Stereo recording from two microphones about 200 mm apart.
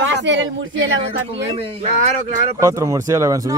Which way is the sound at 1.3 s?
30° right (ahead or behind).